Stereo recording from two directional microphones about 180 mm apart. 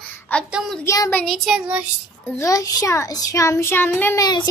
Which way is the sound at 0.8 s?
15° left (ahead or behind).